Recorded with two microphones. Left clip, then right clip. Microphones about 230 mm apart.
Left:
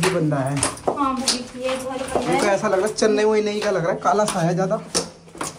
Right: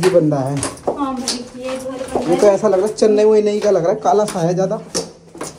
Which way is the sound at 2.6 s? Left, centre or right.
Left.